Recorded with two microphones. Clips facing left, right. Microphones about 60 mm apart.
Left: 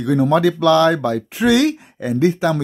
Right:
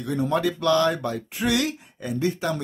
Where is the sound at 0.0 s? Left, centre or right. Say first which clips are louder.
Left 9 dB; left.